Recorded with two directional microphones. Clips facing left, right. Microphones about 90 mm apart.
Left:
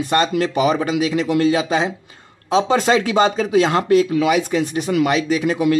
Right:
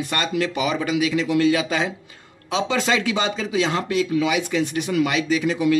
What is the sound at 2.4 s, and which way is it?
Speech, 40° left (ahead or behind).